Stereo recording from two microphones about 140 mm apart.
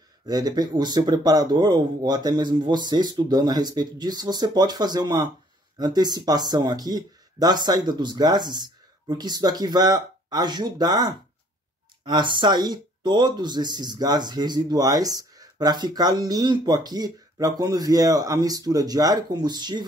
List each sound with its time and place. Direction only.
0.3 s speech: 30° right (ahead or behind)